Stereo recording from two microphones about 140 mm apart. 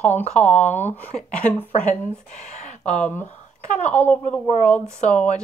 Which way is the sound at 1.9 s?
60° left (ahead or behind).